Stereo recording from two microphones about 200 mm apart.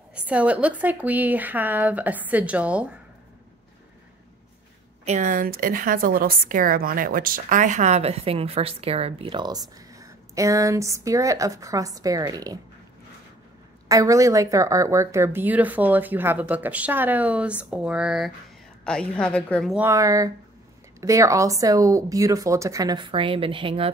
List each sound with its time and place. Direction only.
0.1 s speech: 5° right (ahead or behind)
5.0 s a woman's voice: 35° right (ahead or behind); by 12.5 s 20° right (ahead or behind)
13.8 s a woman's voice: 15° right (ahead or behind); by 19.8 s 5° left (ahead or behind)
19.8 s speech: 15° right (ahead or behind)